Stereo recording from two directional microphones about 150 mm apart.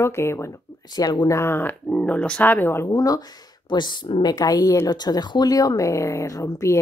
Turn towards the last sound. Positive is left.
turn(degrees=20)  # may be behind; listen again after turning